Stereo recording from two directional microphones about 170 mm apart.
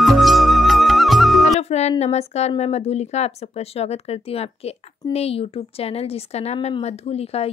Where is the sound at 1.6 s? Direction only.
40° left (ahead or behind).